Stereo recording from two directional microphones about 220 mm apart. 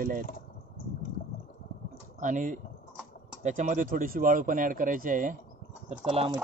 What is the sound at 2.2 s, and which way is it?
Speech, 35° right (ahead or behind).